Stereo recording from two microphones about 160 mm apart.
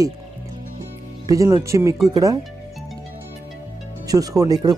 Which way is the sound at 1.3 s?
20° right (ahead or behind).